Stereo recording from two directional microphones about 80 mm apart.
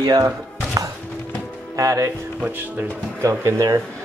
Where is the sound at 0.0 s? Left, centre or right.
Right.